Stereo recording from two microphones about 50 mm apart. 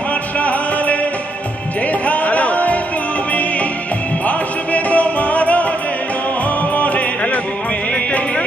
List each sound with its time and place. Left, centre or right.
0.4 s music: left
4.3 s music: left
6.7 s music: left